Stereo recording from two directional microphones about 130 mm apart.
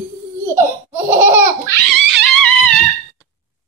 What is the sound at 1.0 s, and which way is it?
Laughter, 20° right (ahead or behind).